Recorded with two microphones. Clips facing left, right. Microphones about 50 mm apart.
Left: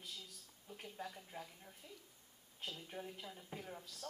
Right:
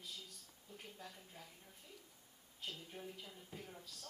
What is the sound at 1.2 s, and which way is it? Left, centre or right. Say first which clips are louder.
Speech: left 6 dB; left.